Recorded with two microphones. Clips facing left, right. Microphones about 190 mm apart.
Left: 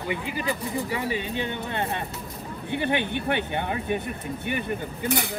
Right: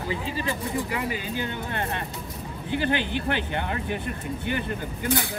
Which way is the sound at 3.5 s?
20° left (ahead or behind).